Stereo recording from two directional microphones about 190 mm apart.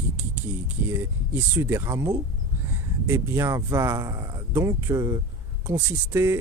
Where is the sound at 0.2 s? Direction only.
10° right (ahead or behind).